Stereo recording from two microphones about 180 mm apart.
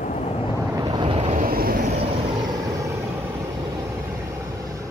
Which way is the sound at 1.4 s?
55° right (ahead or behind).